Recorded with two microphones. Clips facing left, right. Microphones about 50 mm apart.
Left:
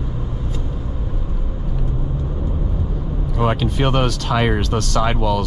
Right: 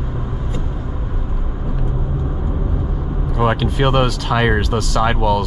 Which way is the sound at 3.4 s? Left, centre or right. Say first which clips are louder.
Right 2 dB; centre.